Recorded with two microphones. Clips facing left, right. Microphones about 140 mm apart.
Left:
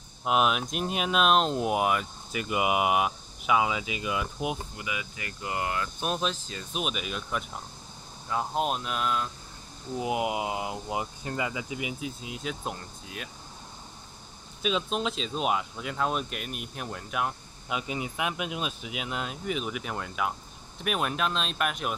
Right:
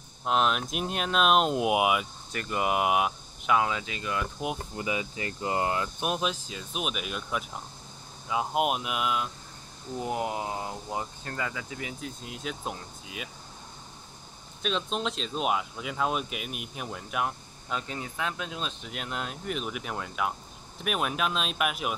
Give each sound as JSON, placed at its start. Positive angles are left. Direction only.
{"t": 0.2, "sound": "speech", "side_deg": 10}
{"t": 2.3, "sound": "speech", "side_deg": 5}
{"t": 4.7, "sound": "speech", "side_deg": -30}
{"t": 5.9, "sound": "speech", "side_deg": -10}
{"t": 9.9, "sound": "speech", "side_deg": 10}
{"t": 14.6, "sound": "speech", "side_deg": 5}